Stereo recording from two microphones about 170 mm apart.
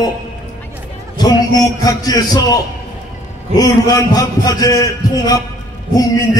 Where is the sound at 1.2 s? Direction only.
20° left (ahead or behind).